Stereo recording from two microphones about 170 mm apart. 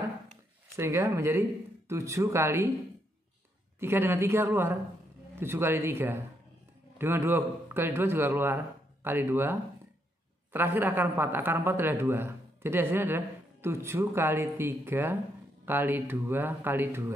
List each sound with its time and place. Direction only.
0.7 s a woman's voice: 15° right (ahead or behind)
3.8 s a woman's voice: 15° right (ahead or behind)